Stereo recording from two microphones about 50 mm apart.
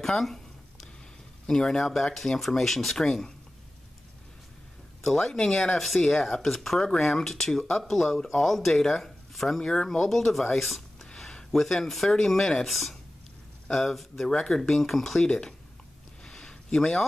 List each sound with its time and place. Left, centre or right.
0.0 s a sound: centre
1.5 s speech: centre
5.0 s speech: centre
9.6 s speech: centre
9.8 s speech: centre
15.2 s speech: centre
16.3 s a sound: centre